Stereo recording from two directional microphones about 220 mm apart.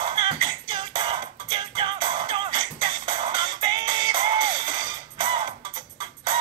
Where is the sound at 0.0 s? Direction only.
20° right (ahead or behind).